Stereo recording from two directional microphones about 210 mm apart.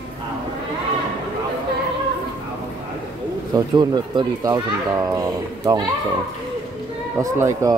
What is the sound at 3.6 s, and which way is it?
Speech, 20° right (ahead or behind).